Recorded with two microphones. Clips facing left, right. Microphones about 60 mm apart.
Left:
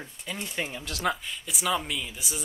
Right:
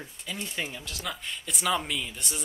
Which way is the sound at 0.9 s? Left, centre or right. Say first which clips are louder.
Left 8 dB; left.